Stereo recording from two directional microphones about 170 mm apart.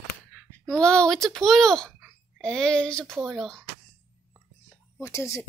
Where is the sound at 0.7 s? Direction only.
5° left (ahead or behind).